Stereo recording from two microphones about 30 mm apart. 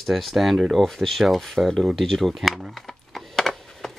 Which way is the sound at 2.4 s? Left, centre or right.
Centre.